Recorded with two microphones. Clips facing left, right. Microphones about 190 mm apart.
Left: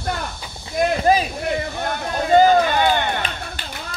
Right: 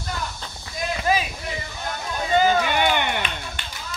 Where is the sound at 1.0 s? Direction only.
40° left (ahead or behind).